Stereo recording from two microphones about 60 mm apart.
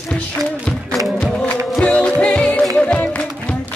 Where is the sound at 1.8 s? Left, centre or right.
Centre.